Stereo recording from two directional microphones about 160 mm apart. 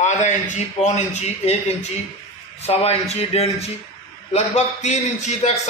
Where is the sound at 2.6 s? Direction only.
40° left (ahead or behind).